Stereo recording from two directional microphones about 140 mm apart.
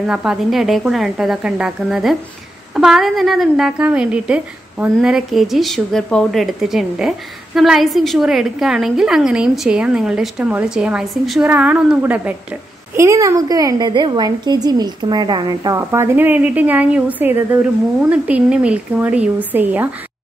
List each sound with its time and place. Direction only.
0.0 s speech: 5° right (ahead or behind)
12.9 s a woman's voice: 20° right (ahead or behind)